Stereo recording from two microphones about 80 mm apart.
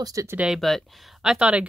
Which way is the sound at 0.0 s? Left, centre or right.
Right.